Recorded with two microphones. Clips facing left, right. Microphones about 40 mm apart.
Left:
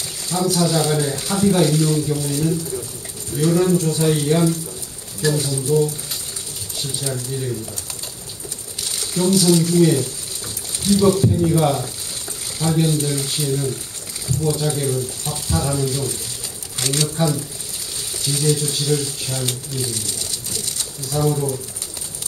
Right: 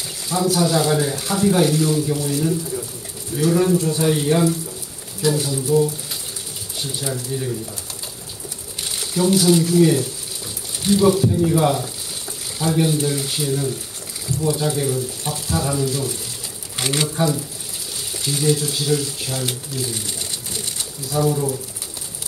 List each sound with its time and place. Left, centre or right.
0.3 s speech: centre
8.8 s speech: centre
16.7 s speech: centre
19.9 s pigeon: centre
21.1 s speech: centre